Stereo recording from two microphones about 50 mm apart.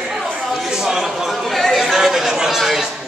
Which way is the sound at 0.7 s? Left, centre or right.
Centre.